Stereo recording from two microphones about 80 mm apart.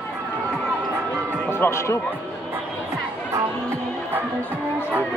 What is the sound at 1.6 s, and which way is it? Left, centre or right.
Speech, left.